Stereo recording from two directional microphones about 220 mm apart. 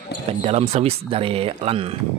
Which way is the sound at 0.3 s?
25° right (ahead or behind).